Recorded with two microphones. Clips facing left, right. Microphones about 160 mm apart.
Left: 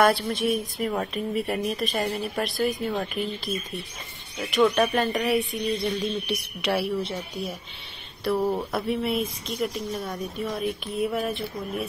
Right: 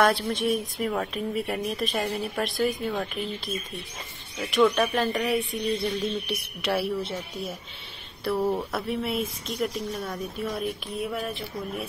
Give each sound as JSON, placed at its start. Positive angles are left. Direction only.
{"t": 0.0, "sound": "speech", "side_deg": 0}
{"t": 4.4, "sound": "speech", "side_deg": 0}